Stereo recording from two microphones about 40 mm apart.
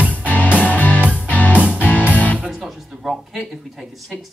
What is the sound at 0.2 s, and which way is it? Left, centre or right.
Music, left.